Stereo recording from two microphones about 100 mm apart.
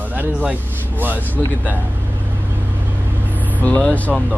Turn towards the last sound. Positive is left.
turn(degrees=15)  # may be behind; listen again after turning